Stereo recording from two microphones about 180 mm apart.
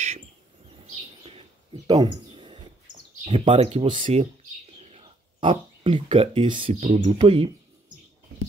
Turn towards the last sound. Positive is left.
turn(degrees=-30)  # may be behind; listen again after turning